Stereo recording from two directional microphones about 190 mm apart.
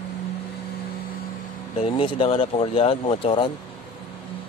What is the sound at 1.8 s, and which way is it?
Speech, 30° left (ahead or behind).